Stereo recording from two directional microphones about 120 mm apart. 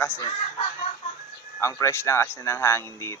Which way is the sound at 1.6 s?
25° left (ahead or behind).